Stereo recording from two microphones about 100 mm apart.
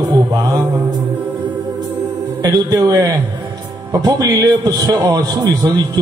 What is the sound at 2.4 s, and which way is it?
A man's voice, 35° right (ahead or behind).